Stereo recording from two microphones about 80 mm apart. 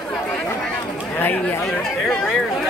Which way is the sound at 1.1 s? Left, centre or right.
Left.